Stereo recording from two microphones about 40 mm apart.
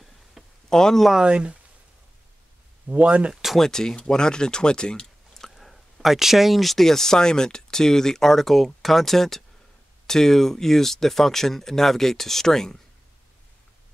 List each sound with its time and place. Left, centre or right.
0.7 s speech: centre
1.2 s speech: right
2.9 s speech: right
3.5 s speech: centre
5.4 s a sound: centre
6.1 s speech: centre